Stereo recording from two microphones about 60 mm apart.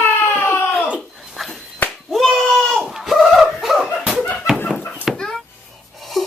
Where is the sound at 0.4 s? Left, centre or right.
Left.